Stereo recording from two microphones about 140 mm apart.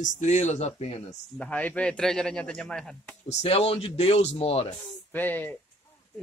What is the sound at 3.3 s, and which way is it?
Speech, 50° left (ahead or behind).